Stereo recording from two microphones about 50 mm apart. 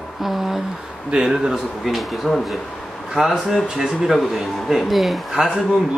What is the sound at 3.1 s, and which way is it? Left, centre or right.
Speech, centre.